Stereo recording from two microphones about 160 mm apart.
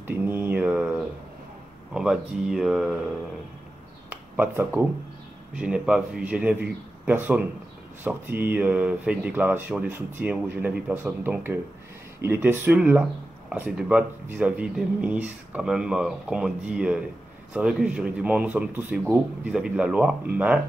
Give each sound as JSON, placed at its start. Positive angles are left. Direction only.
{"t": 0.0, "sound": "mantra", "side_deg": -15}
{"t": 2.0, "sound": "speech", "side_deg": -5}
{"t": 4.1, "sound": "a sound", "side_deg": -15}
{"t": 5.6, "sound": "speech", "side_deg": -5}